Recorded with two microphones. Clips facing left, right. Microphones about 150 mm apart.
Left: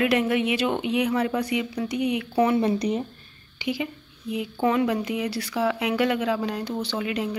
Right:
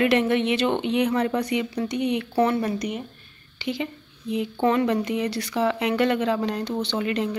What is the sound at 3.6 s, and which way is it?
A woman's voice, 10° left (ahead or behind).